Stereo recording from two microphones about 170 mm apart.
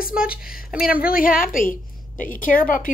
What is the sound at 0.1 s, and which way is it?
Speech, 5° right (ahead or behind).